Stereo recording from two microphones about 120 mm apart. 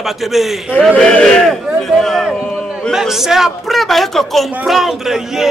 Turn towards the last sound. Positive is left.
turn(degrees=-5)  # may be behind; listen again after turning